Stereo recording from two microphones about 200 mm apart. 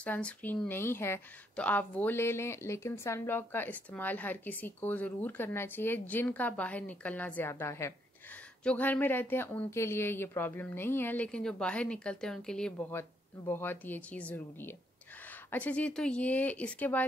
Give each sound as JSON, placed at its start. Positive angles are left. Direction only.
{"t": 0.0, "sound": "speech", "side_deg": 5}